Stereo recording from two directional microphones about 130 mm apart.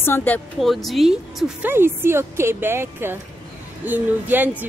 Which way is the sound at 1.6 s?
15° right (ahead or behind).